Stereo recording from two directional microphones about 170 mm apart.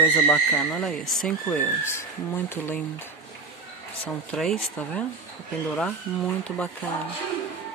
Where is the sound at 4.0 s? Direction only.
5° left (ahead or behind).